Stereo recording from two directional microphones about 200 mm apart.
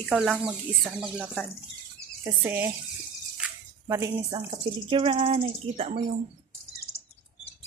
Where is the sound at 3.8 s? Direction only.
20° right (ahead or behind).